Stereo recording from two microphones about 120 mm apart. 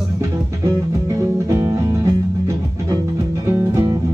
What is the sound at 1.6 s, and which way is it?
Music, 25° right (ahead or behind).